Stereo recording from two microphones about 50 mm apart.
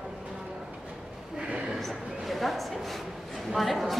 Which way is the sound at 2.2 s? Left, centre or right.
Centre.